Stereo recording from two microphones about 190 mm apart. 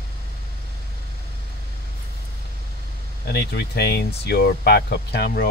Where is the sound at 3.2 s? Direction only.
60° left (ahead or behind).